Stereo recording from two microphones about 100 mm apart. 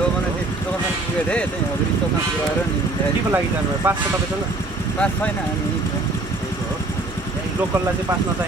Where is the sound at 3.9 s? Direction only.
20° right (ahead or behind).